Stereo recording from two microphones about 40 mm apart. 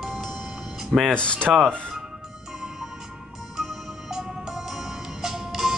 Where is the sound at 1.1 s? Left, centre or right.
Left.